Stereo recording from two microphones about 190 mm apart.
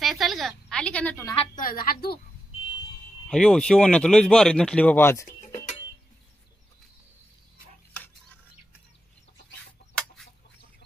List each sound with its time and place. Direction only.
0.0 s a woman's voice: centre (ahead or behind)
1.3 s a woman's voice: 30° left (ahead or behind)
1.6 s a woman's voice: 50° left (ahead or behind)
3.3 s speech: 5° left (ahead or behind)
5.4 s music: 40° left (ahead or behind)
9.9 s chicken: 5° left (ahead or behind)